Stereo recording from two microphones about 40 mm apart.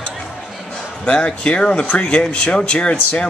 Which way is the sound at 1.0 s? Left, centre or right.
Left.